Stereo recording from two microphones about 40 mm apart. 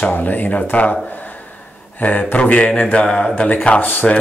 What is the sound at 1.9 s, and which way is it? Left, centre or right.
A man's voice, left.